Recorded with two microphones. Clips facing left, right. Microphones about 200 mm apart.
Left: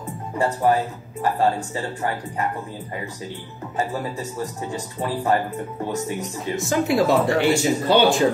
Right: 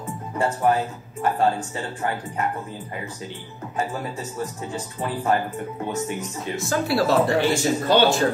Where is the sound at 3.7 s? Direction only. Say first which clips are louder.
Left 2 dB; 35° left (ahead or behind).